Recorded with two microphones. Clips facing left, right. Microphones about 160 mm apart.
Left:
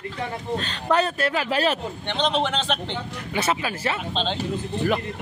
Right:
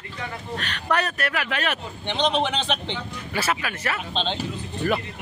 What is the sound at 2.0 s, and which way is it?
Speech, centre (ahead or behind).